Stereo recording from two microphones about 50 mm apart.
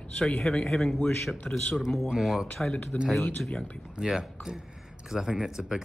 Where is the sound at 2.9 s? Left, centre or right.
Left.